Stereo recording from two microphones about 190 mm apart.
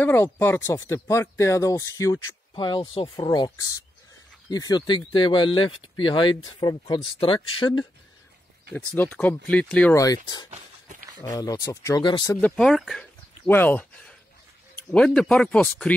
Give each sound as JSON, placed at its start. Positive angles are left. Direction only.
{"t": 0.0, "sound": "speech", "side_deg": 10}
{"t": 8.7, "sound": "speech", "side_deg": 10}
{"t": 9.9, "sound": "speech", "side_deg": 20}
{"t": 10.5, "sound": "a sound", "side_deg": -40}
{"t": 11.2, "sound": "speech", "side_deg": 20}
{"t": 12.4, "sound": "speech", "side_deg": 5}